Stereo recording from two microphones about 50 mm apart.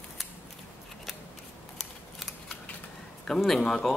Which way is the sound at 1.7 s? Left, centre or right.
Centre.